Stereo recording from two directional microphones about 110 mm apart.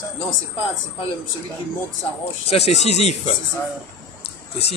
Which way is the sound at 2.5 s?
80° left.